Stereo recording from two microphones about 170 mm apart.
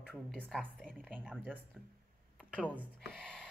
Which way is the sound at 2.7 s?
10° right (ahead or behind).